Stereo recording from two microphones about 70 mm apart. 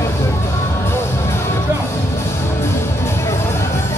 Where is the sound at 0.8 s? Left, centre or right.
Left.